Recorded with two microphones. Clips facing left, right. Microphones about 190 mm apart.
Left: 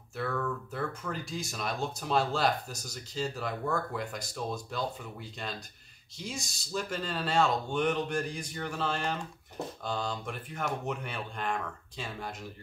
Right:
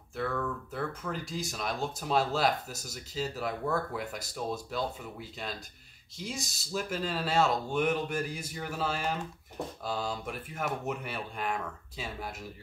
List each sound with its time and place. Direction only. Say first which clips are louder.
0.1 s speech: even; centre (ahead or behind)
6.1 s speech: right 1 dB; centre (ahead or behind)